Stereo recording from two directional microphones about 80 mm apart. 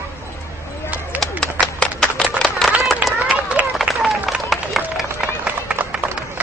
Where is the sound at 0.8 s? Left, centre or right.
Right.